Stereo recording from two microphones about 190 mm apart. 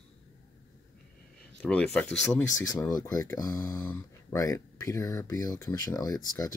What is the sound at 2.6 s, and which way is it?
Speech, 20° left (ahead or behind).